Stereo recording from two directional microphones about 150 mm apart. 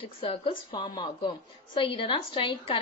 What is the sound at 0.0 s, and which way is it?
A woman's voice, 35° left (ahead or behind).